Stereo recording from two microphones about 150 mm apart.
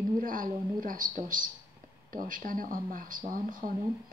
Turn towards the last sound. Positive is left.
turn(degrees=-65)  # may be behind; listen again after turning